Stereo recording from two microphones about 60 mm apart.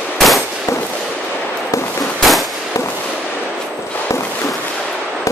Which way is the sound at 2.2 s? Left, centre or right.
Centre.